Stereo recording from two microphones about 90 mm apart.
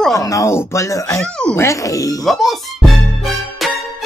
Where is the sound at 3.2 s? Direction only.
Centre (ahead or behind).